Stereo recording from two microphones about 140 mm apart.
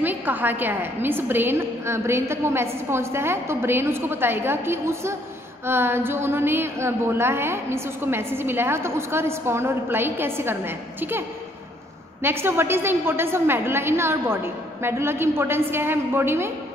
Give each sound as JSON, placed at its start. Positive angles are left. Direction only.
{"t": 0.0, "sound": "a woman's voice", "side_deg": -15}